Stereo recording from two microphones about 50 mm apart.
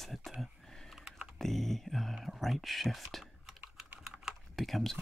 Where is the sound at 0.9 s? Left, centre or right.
Centre.